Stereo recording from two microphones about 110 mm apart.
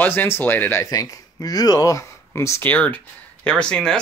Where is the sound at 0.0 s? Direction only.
20° left (ahead or behind).